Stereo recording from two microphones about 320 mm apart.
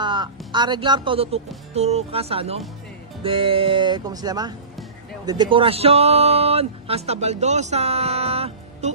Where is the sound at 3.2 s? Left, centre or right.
Centre.